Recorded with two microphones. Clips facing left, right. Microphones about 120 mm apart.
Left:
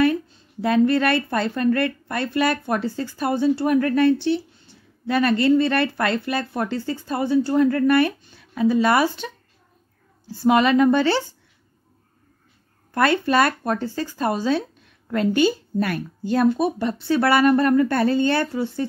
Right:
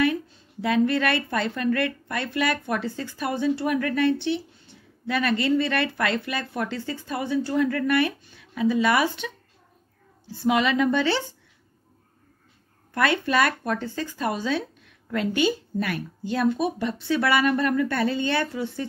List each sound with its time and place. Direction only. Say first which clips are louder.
0.0 s a woman's voice: left 4 dB; 40° left (ahead or behind)
12.9 s a woman's voice: left 4 dB; 40° left (ahead or behind)